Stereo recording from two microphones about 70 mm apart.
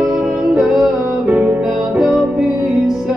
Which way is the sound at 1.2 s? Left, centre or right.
Right.